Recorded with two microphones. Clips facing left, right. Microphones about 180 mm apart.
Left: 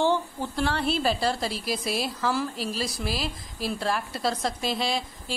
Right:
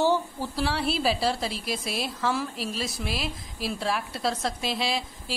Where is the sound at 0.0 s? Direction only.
5° right (ahead or behind).